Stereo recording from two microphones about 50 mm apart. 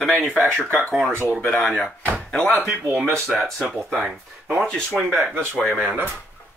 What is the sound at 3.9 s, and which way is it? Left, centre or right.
Speech, centre.